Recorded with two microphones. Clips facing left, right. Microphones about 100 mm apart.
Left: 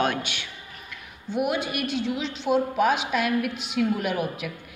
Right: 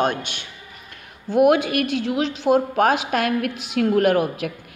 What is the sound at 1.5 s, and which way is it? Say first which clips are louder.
A woman's voice: right 7 dB; 50° right (ahead or behind).